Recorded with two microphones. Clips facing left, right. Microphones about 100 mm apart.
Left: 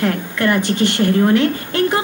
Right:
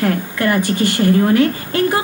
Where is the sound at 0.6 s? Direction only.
60° left (ahead or behind).